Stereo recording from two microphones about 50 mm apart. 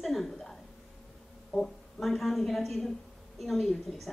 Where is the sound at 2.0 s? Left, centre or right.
Centre.